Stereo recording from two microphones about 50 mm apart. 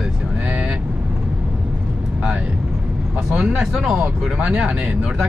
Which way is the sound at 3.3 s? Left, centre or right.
Centre.